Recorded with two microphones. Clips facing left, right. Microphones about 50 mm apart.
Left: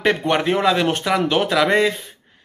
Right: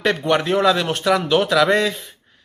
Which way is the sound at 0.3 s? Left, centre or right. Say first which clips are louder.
Right 3 dB; centre.